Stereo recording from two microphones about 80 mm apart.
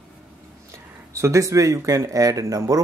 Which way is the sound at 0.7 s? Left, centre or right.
Right.